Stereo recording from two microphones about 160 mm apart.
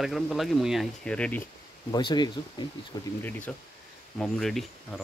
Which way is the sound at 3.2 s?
10° left (ahead or behind).